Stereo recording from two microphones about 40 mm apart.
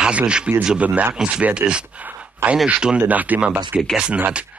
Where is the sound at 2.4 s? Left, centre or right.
Right.